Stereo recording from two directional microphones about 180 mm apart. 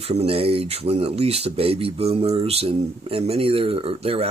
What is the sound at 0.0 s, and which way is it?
Speech, 35° right (ahead or behind).